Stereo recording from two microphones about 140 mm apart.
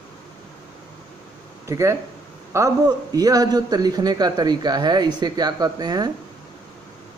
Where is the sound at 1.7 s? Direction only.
20° right (ahead or behind).